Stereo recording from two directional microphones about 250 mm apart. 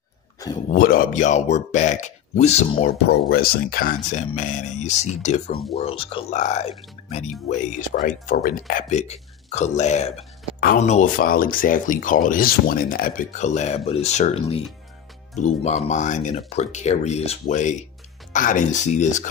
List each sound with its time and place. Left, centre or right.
0.7 s speech: left
3.1 s speech: left
5.8 s speech: left